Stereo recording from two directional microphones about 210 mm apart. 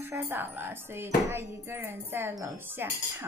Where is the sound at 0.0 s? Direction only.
10° right (ahead or behind).